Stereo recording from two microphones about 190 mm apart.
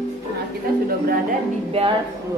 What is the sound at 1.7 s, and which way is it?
Speech, 30° right (ahead or behind).